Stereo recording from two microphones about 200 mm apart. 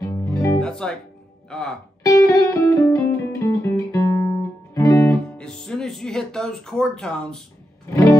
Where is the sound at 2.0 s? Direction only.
15° left (ahead or behind).